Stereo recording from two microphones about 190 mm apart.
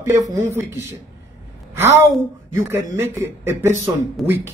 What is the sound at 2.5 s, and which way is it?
Speech, 10° right (ahead or behind).